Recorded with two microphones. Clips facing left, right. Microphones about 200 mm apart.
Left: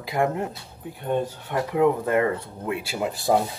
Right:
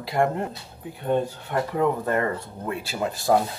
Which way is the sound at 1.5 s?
10° left (ahead or behind).